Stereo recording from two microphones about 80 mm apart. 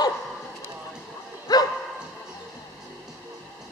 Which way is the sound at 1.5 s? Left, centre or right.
Left.